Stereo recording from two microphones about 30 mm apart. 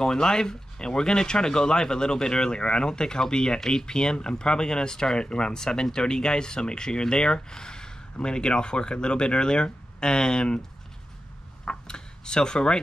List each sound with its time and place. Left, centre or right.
0.0 s speech: left
11.9 s speech: left